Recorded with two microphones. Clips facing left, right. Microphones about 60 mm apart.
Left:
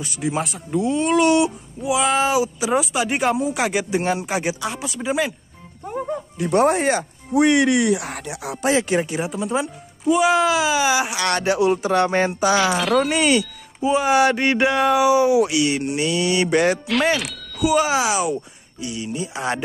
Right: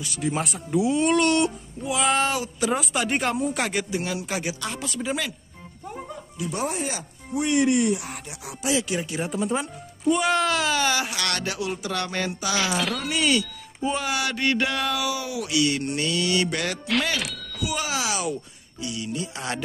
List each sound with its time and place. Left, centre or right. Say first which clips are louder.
0.2 s speech: left 3 dB; centre
3.9 s speech: left 7 dB; left
4.6 s speech: left 4 dB; centre
6.3 s speech: left 11 dB; left
7.3 s speech: left 5 dB; left
8.6 s speech: left 6 dB; left
9.2 s speech: left 3 dB; centre; by 12.7 s left
12.7 s speech: left 8 dB; centre
13.0 s speech: left 5 dB; left
17.2 s speech: left 2 dB; centre
17.6 s speech: left 10 dB; left